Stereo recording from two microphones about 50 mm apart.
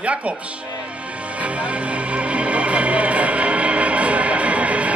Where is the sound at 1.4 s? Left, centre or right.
Right.